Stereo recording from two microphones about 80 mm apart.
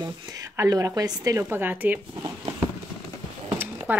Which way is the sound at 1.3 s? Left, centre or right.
Right.